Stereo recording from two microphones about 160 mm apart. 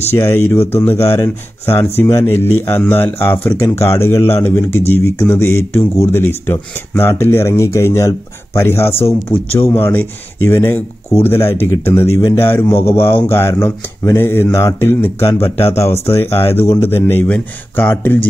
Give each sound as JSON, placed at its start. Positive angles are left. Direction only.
{"t": 0.1, "sound": "speech", "side_deg": 15}